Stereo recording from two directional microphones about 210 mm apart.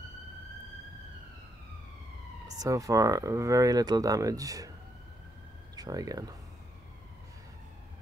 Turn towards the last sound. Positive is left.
turn(degrees=-15)  # may be behind; listen again after turning